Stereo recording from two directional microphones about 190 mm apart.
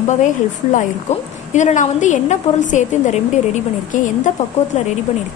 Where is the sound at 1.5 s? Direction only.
40° left (ahead or behind).